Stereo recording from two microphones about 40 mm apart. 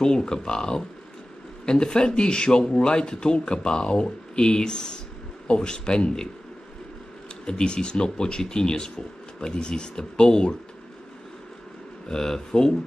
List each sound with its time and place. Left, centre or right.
0.0 s speech: centre
7.4 s speech: left
12.1 s speech: centre